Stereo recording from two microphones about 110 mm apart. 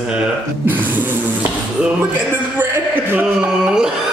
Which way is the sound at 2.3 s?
20° right (ahead or behind).